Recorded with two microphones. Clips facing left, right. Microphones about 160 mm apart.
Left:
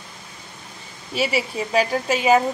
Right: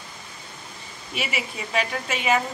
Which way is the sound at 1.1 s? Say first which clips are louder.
Left 8 dB; 35° left (ahead or behind).